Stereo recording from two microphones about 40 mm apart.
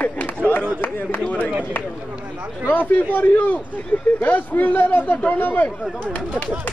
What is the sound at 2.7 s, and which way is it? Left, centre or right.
A man's voice, left.